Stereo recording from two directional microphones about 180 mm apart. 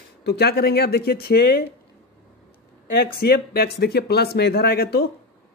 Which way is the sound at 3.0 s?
60° left (ahead or behind).